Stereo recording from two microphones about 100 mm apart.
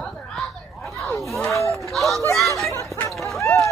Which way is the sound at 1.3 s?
Centre (ahead or behind).